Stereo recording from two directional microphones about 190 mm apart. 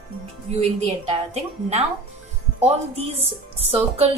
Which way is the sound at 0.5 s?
35° right (ahead or behind).